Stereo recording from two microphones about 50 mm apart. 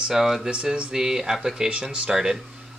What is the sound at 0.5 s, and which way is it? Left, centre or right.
Speech, centre.